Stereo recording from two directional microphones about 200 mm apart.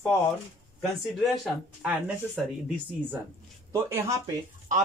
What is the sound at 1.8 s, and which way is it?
Speech, 5° right (ahead or behind).